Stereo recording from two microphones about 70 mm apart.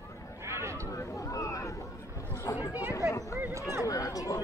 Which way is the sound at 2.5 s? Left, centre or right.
Right.